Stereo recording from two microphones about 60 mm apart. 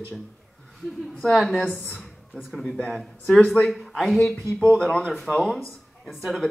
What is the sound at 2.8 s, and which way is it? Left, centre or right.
Speech, centre.